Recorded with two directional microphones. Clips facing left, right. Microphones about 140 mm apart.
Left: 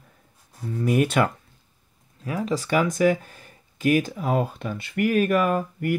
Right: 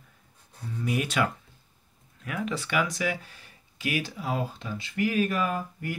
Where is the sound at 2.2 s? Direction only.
35° left (ahead or behind).